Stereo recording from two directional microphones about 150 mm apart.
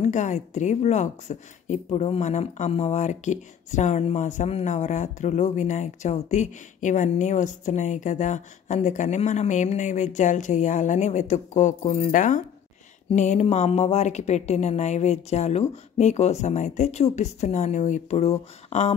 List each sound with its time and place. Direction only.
0.0 s a woman's voice: 55° left (ahead or behind)
12.1 s a woman's voice: 60° left (ahead or behind)